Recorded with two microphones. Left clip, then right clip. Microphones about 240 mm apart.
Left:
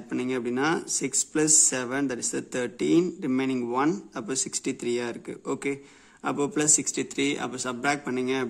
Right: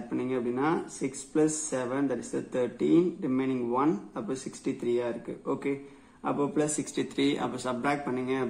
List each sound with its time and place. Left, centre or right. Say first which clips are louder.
0.1 s speech: left 2 dB; left